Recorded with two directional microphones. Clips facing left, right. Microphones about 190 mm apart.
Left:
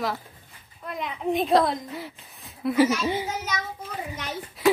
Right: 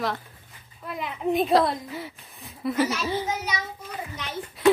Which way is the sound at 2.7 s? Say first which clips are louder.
Left 4 dB; 15° left (ahead or behind).